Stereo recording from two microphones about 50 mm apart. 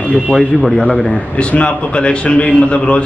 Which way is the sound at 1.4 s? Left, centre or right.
Left.